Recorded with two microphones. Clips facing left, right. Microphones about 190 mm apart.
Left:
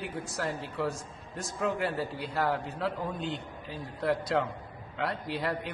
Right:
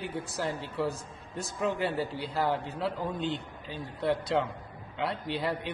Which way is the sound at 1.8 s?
Centre (ahead or behind).